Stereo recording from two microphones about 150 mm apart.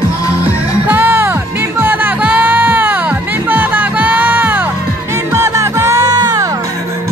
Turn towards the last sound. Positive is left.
turn(degrees=-25)  # may be behind; listen again after turning